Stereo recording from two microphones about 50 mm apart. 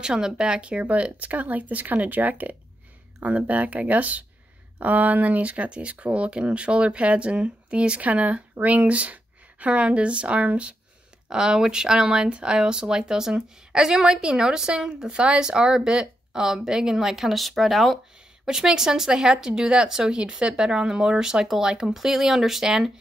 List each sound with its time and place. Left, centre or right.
0.0 s speech: centre
11.2 s speech: centre